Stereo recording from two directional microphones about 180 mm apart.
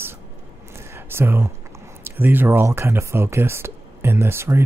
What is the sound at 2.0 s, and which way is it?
Speech, 10° right (ahead or behind).